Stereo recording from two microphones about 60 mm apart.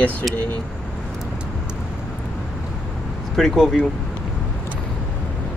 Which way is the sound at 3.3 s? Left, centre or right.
Centre.